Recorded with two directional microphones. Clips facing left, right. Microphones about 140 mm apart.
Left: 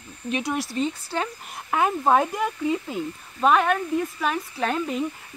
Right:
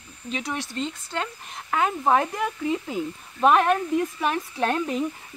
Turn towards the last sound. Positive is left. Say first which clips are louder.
# right 1 dB
turn(degrees=0)  # may be behind; listen again after turning